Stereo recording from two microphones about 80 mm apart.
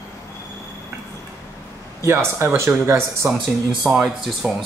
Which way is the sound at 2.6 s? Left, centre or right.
Right.